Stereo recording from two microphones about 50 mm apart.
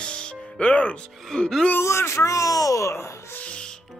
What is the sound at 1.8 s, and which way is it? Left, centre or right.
Speech, left.